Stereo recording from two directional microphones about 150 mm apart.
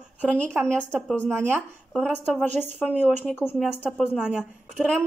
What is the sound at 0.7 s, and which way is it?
Speech, 5° left (ahead or behind).